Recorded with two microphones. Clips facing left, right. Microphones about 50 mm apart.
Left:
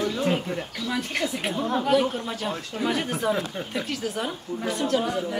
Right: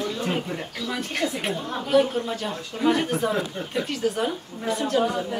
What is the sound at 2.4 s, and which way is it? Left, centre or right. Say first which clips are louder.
A woman's voice: right 3 dB; centre.